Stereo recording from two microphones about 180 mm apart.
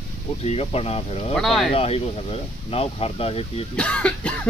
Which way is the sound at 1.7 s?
30° left (ahead or behind).